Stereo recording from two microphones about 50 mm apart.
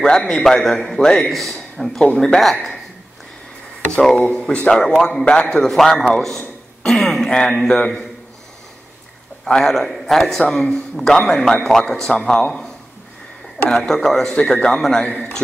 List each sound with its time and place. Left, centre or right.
0.0 s speech: centre
0.3 s a man's voice: centre
3.9 s speech: centre
4.2 s a man's voice: centre
5.2 s speech: left
5.5 s a man's voice: centre
6.8 s throat clearing: centre
7.2 s speech: centre
7.5 s a man's voice: centre
9.7 s a man's voice: centre
13.7 s a man's voice: centre
15.0 s a man's voice: left